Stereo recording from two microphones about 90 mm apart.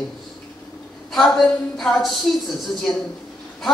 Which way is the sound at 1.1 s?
5° left (ahead or behind).